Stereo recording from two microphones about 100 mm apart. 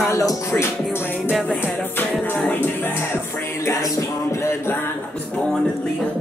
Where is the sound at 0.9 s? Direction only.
20° left (ahead or behind).